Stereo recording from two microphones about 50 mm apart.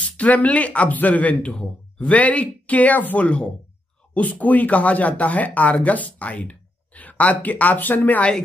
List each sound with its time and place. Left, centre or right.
0.2 s speech: left